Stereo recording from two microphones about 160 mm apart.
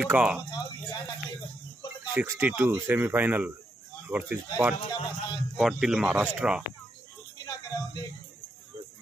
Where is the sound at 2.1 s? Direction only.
10° right (ahead or behind).